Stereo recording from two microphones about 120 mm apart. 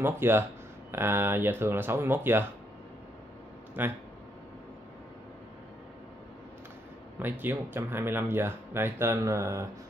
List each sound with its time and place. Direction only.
0.0 s speech: 20° right (ahead or behind)
3.8 s speech: 15° right (ahead or behind)
7.2 s speech: 15° right (ahead or behind)